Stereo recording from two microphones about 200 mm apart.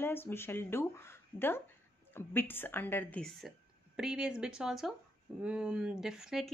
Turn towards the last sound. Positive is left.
turn(degrees=-5)  # may be behind; listen again after turning